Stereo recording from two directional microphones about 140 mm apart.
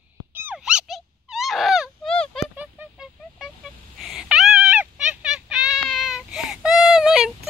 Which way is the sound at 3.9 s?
5° right (ahead or behind).